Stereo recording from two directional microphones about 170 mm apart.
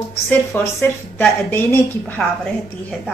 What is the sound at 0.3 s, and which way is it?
A woman's voice, 10° left (ahead or behind).